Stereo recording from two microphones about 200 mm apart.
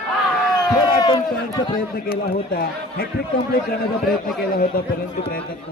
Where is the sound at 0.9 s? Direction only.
20° left (ahead or behind).